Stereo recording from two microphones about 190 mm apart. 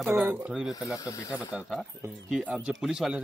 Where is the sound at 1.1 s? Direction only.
15° left (ahead or behind).